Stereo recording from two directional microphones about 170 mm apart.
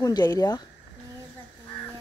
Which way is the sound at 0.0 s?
20° left (ahead or behind).